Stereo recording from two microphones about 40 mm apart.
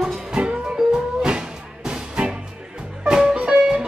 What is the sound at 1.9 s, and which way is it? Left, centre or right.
Music, right.